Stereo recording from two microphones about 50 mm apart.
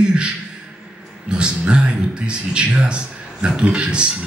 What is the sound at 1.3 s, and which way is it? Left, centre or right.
A man's voice, centre.